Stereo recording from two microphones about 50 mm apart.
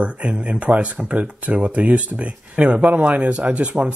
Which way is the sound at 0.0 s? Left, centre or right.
Right.